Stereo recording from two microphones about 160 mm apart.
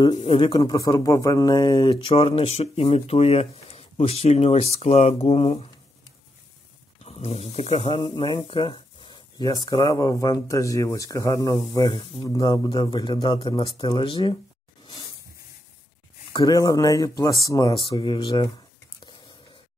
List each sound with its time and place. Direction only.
0.1 s speech: 40° left (ahead or behind)
7.0 s speech: 40° left (ahead or behind)
16.3 s speech: 25° left (ahead or behind)